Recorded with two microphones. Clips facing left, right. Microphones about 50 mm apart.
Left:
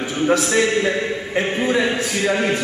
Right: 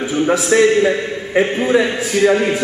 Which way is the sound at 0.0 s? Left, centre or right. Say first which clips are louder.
Right 2 dB; centre.